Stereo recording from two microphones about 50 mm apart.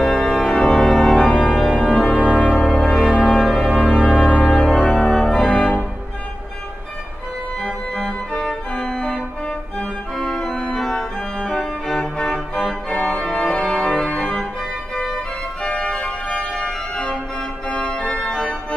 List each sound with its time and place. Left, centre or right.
0.0 s organ: centre
1.3 s organ: centre
2.7 s music: centre
4.3 s organ: left
5.1 s organ: centre
5.4 s organ: left
7.9 s organ: centre
10.2 s organ: left
10.8 s organ: centre
12.0 s music: left
12.5 s organ: centre
13.9 s organ: left
15.6 s organ: centre